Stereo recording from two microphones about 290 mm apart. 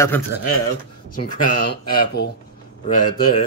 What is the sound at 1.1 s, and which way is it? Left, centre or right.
Speech, left.